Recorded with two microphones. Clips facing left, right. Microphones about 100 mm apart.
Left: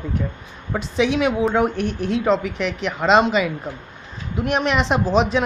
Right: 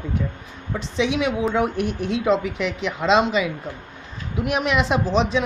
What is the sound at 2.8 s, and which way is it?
Speech, 45° left (ahead or behind).